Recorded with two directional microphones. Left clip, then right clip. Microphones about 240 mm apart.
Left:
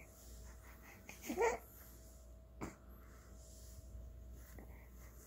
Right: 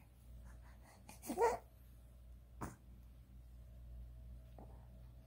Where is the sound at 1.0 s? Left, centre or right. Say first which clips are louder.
Right 1 dB; right.